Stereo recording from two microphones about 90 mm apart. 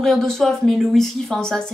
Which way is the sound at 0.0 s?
5° left (ahead or behind).